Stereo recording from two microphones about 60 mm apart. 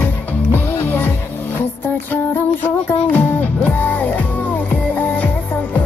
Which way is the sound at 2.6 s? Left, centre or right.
Left.